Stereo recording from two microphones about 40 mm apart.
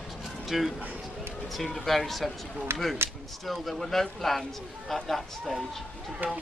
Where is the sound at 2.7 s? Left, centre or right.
Right.